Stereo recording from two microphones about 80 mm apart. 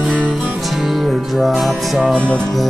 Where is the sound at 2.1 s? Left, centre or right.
Centre.